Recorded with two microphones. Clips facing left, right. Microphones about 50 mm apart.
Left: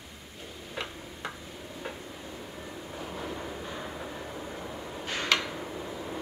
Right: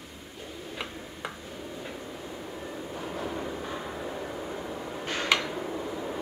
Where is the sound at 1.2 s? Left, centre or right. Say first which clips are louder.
Even; centre.